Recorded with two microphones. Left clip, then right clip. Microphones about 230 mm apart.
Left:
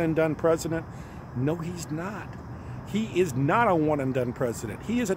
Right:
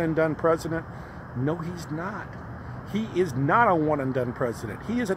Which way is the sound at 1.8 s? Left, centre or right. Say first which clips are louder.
Right 1 dB; centre.